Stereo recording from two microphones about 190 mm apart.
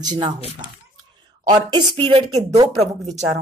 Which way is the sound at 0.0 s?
20° right (ahead or behind).